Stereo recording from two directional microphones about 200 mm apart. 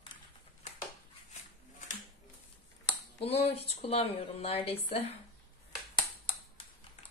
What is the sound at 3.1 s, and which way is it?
A woman's voice, 30° left (ahead or behind).